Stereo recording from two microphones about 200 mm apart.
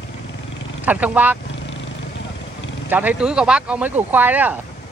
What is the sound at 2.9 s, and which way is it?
Speech, 10° right (ahead or behind).